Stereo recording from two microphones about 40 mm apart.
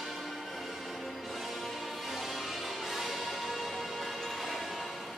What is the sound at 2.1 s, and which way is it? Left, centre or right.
Music, centre.